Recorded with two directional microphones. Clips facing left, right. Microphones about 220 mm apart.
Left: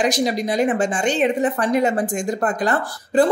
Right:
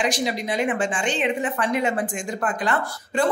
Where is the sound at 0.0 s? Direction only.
40° left (ahead or behind).